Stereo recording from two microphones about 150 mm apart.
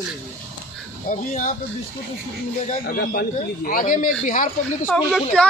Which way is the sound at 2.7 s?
75° left (ahead or behind).